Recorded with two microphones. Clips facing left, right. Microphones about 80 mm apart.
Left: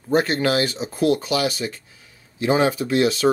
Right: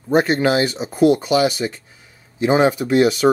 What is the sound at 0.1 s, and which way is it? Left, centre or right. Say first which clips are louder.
Speech: right 3 dB; centre.